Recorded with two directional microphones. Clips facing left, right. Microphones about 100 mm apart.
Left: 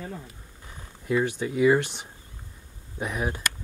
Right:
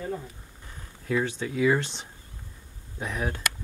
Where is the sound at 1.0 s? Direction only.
15° left (ahead or behind).